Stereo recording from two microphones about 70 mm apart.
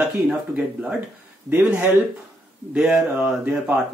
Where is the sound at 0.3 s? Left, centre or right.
Centre.